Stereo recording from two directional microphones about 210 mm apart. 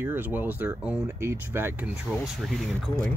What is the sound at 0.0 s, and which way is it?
Speech, 10° right (ahead or behind).